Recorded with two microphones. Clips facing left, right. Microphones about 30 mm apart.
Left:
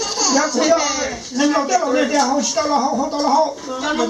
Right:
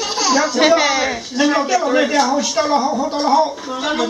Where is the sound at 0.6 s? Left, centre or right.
Right.